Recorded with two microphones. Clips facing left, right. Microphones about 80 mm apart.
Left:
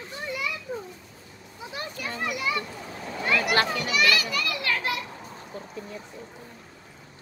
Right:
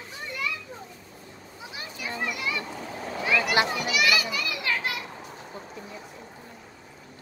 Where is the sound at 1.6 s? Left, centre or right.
Centre.